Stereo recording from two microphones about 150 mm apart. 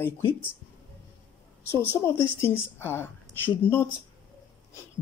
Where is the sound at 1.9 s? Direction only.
20° left (ahead or behind).